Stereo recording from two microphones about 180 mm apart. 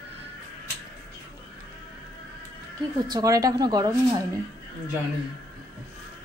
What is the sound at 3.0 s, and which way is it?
Speech, 20° right (ahead or behind).